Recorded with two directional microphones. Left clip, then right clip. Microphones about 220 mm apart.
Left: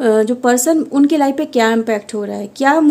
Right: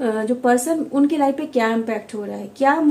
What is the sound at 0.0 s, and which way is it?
Speech, 50° left (ahead or behind).